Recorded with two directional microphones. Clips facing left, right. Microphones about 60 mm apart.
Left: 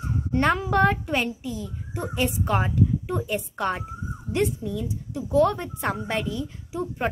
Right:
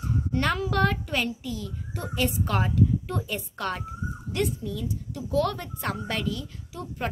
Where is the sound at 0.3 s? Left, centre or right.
Left.